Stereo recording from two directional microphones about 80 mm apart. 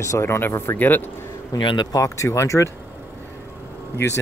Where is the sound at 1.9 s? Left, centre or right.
Left.